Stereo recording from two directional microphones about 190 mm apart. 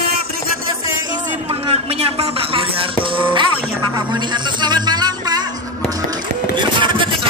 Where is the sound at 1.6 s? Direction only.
30° right (ahead or behind).